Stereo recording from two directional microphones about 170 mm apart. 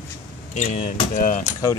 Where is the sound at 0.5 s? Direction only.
40° left (ahead or behind).